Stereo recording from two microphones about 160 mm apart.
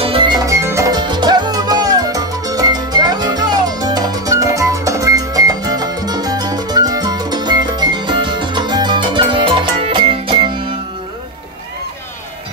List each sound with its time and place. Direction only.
0.0 s music: 35° right (ahead or behind)